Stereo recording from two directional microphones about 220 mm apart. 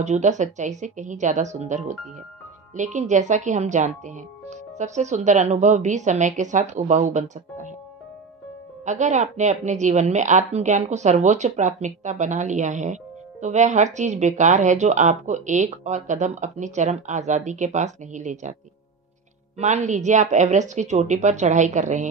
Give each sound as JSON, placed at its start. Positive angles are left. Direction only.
{"t": 0.0, "sound": "a woman's voice", "side_deg": -30}
{"t": 8.8, "sound": "a woman's voice", "side_deg": -30}
{"t": 19.6, "sound": "a woman's voice", "side_deg": -35}